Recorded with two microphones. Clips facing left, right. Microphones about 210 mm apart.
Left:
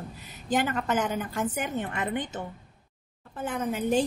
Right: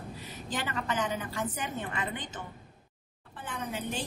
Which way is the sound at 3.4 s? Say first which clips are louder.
Left 8 dB; 45° left (ahead or behind).